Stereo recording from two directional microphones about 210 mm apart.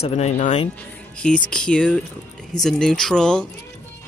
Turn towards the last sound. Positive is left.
turn(degrees=5)  # may be behind; listen again after turning